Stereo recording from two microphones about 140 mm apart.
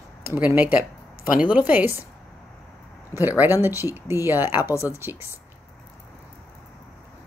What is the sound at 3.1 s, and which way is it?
Speech, 15° right (ahead or behind).